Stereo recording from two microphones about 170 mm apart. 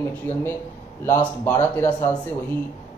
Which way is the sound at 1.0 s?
10° left (ahead or behind).